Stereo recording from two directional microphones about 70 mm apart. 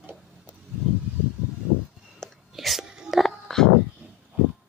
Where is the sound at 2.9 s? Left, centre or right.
Centre.